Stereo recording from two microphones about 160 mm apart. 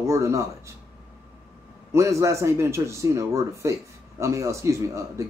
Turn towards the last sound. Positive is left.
turn(degrees=-20)  # may be behind; listen again after turning